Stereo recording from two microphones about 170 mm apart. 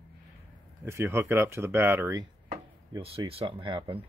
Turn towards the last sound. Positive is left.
turn(degrees=-30)  # may be behind; listen again after turning